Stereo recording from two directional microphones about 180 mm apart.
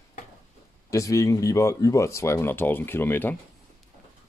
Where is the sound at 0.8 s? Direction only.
15° left (ahead or behind).